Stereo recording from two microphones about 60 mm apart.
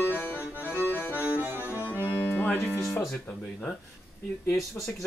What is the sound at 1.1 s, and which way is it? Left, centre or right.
Accordion, right.